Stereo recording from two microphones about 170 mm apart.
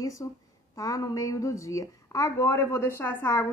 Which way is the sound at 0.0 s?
20° left (ahead or behind).